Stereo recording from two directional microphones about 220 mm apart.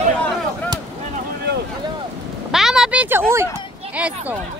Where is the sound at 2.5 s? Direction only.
Centre (ahead or behind).